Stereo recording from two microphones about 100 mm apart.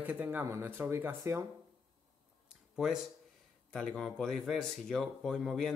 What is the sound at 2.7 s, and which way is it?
Speech, 5° right (ahead or behind).